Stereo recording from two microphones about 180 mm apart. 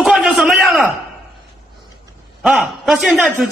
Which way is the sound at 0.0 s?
5° right (ahead or behind).